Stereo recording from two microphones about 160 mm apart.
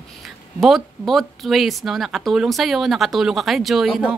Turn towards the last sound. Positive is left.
turn(degrees=0)  # may be behind; listen again after turning